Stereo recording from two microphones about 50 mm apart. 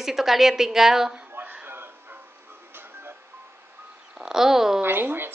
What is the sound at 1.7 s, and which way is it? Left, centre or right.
Music, right.